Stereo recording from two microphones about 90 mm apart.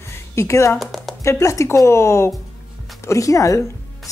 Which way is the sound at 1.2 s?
35° left (ahead or behind).